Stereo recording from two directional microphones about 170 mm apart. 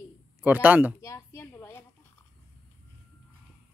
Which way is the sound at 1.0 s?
15° left (ahead or behind).